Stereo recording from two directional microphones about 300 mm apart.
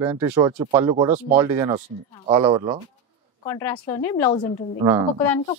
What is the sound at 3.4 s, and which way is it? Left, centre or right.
Speech, centre.